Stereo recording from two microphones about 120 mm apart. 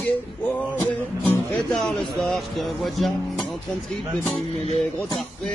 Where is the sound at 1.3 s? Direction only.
10° left (ahead or behind).